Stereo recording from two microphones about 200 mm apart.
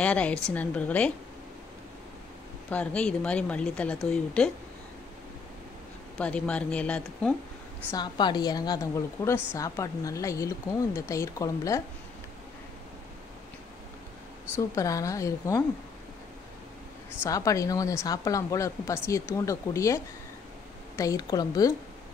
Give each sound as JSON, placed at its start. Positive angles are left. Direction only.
{"t": 0.0, "sound": "a woman's voice", "side_deg": 5}
{"t": 2.7, "sound": "speech", "side_deg": 5}
{"t": 6.1, "sound": "speech", "side_deg": 5}
{"t": 7.9, "sound": "a woman's voice", "side_deg": 20}
{"t": 14.8, "sound": "a woman's voice", "side_deg": 15}
{"t": 17.2, "sound": "a woman's voice", "side_deg": 15}